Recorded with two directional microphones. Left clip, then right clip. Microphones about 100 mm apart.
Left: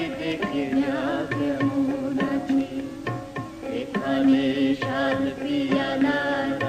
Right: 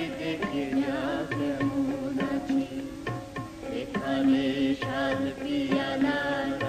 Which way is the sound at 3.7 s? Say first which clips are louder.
Left 4 dB; 30° left (ahead or behind).